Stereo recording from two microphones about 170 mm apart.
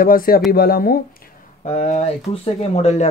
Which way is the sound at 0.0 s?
55° left (ahead or behind).